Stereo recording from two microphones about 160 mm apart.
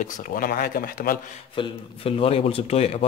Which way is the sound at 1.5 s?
35° left (ahead or behind).